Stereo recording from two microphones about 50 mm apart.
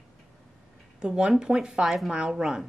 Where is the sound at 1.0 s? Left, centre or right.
Centre.